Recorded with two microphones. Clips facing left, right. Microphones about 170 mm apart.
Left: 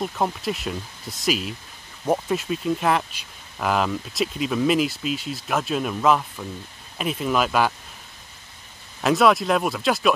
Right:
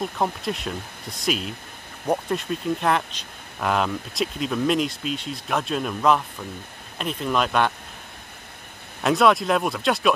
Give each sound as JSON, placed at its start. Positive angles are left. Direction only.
{"t": 0.0, "sound": "speech", "side_deg": 0}
{"t": 9.0, "sound": "speech", "side_deg": 0}